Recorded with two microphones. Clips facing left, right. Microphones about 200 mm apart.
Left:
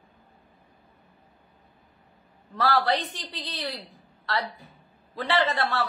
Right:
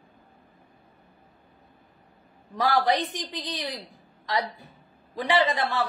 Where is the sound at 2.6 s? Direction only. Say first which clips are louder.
Right 1 dB; 15° right (ahead or behind).